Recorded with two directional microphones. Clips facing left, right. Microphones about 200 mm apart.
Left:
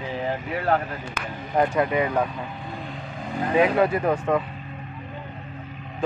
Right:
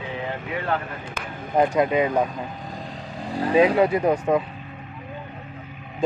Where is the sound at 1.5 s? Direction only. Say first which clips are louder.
Right 2 dB; 15° right (ahead or behind).